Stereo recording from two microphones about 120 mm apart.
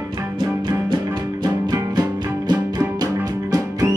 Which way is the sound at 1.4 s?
35° right (ahead or behind).